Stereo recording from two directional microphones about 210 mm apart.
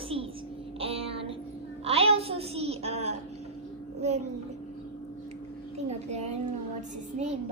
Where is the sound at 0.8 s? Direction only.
30° right (ahead or behind).